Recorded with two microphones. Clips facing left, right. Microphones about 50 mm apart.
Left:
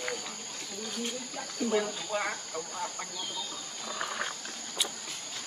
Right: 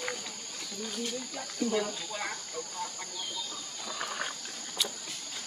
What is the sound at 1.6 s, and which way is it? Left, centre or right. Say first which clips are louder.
Speech: left 1 dB; centre.